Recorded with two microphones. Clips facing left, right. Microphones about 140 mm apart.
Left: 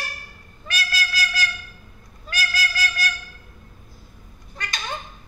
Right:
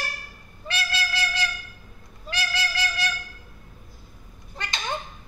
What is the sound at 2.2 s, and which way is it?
Music, 25° right (ahead or behind).